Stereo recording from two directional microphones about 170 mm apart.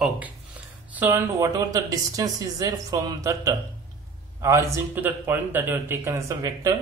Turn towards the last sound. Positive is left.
turn(degrees=-20)  # may be behind; listen again after turning